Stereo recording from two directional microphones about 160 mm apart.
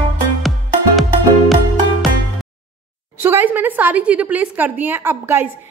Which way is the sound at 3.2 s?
15° right (ahead or behind).